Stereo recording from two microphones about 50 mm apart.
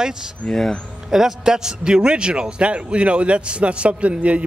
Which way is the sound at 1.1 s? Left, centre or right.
Centre.